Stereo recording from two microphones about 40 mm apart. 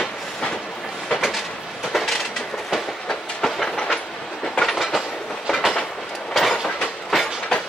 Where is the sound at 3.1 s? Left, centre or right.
Centre.